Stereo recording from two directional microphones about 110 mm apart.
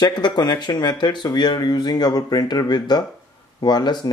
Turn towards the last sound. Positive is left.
turn(degrees=40)  # may be behind; listen again after turning